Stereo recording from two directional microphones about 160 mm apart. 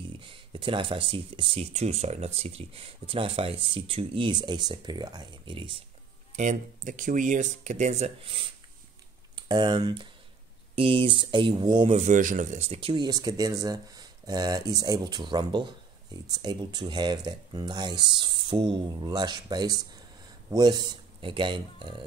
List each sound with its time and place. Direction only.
0.2 s speech: 35° right (ahead or behind)
6.3 s speech: 50° right (ahead or behind); by 22.0 s 30° right (ahead or behind)